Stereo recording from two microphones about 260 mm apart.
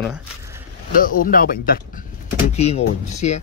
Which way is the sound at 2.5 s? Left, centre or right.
Left.